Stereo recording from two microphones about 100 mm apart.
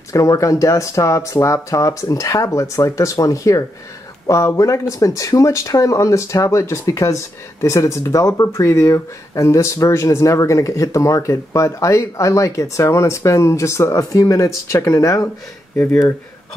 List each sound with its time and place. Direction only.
0.1 s speech: 35° left (ahead or behind)
15.7 s speech: 15° left (ahead or behind)